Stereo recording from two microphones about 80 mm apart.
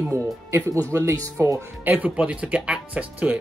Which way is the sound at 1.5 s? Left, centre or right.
Right.